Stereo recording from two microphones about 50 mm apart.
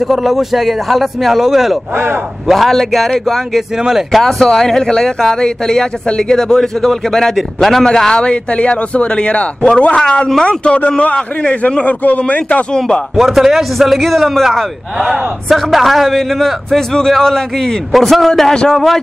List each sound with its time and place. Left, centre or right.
0.1 s a man's voice: centre
4.1 s speech: centre; by 12.6 s left
12.7 s speech: centre
13.1 s a man's voice: centre
15.0 s a man's voice: centre